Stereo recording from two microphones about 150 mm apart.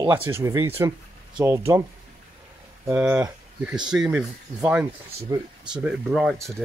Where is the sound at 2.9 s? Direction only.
10° right (ahead or behind).